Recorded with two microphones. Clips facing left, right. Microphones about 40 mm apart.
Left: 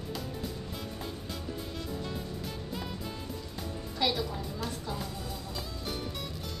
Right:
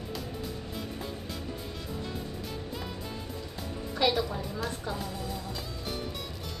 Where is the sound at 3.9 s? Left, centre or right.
Centre.